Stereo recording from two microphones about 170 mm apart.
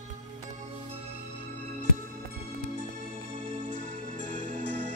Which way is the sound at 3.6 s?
50° right (ahead or behind).